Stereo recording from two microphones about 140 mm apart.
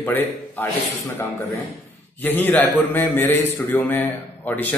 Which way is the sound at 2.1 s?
15° left (ahead or behind).